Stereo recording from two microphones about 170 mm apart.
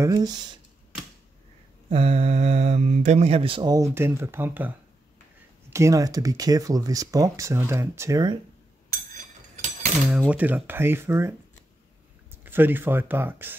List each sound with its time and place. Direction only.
0.0 s speech: 25° right (ahead or behind)
1.9 s speech: 40° right (ahead or behind); by 8.4 s 20° right (ahead or behind)
10.1 s speech: 10° right (ahead or behind)